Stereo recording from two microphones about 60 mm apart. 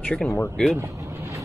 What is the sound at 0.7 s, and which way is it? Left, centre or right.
Vehicle, right.